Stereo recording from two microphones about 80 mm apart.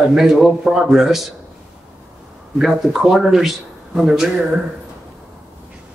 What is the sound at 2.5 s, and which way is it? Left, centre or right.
Speech, centre.